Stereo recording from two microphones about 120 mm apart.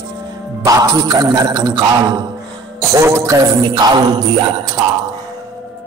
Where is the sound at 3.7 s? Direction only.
35° right (ahead or behind).